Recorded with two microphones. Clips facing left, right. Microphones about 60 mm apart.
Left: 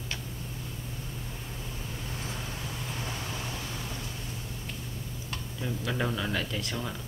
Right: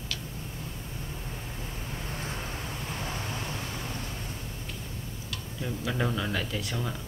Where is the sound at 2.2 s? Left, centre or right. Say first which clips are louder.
Right 1 dB; right.